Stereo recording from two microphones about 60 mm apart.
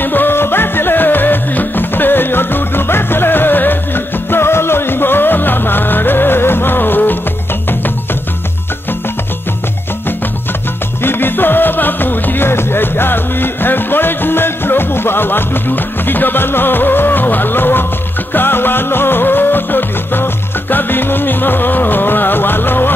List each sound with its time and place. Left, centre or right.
0.0 s music: left
11.0 s music: left